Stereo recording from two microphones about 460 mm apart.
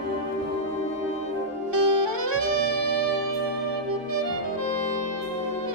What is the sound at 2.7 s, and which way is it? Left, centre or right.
Music, left.